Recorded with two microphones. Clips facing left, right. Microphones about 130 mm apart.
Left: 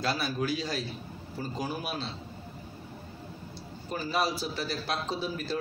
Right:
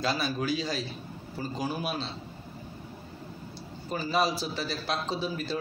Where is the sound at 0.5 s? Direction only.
90° right.